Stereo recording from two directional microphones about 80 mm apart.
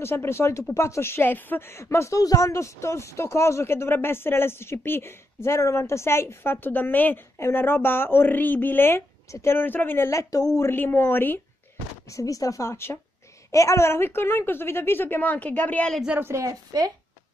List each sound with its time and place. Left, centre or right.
0.0 s a woman's voice: left
12.1 s a woman's voice: left; by 15.9 s centre
16.2 s a woman's voice: right